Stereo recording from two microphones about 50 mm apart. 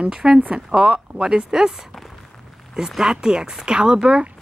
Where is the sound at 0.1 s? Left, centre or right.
Centre.